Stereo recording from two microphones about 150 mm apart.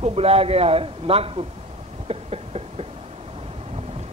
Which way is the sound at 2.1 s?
40° right (ahead or behind).